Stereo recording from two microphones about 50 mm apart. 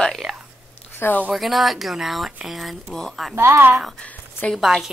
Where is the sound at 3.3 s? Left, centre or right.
Right.